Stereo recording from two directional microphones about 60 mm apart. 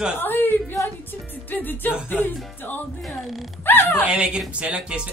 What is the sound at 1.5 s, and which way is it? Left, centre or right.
A woman's voice, left.